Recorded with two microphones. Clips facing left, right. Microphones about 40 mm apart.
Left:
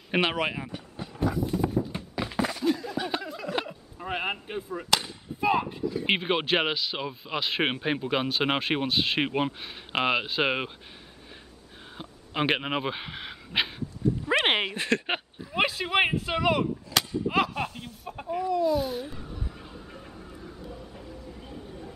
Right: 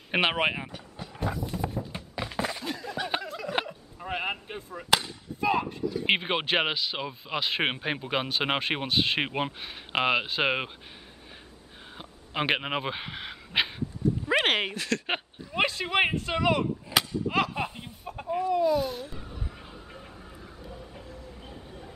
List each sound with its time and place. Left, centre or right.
0.1 s speech: centre
0.7 s vehicle: centre
1.3 s a sound: centre
5.0 s chop: centre
6.0 s speech: centre
12.0 s dog: centre
14.4 s speech: centre
14.8 s speech: left
15.0 s speech: centre
16.9 s whip: right
17.3 s speech: centre
17.6 s chicken: centre
18.0 s speech: centre
19.1 s vehicle: centre